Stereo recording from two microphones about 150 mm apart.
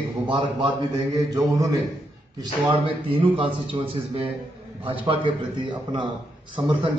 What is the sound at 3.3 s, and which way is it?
Speech, 35° right (ahead or behind).